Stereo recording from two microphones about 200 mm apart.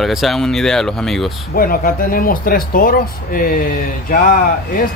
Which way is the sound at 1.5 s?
45° left (ahead or behind).